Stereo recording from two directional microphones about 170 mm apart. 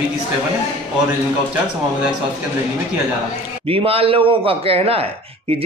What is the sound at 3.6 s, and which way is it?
A man's voice, 35° right (ahead or behind).